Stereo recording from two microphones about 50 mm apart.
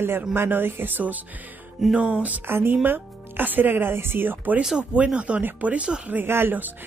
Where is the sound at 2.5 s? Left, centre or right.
Right.